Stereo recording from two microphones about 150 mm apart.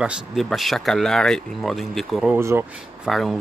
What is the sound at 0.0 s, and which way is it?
Speech, centre (ahead or behind).